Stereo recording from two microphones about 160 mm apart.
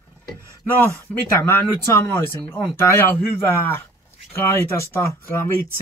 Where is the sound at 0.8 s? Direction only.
15° left (ahead or behind).